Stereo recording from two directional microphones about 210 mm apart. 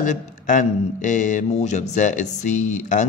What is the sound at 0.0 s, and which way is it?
A man's voice, 35° left (ahead or behind).